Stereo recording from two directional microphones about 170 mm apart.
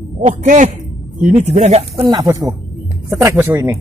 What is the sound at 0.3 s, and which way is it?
A man's voice, 45° right (ahead or behind).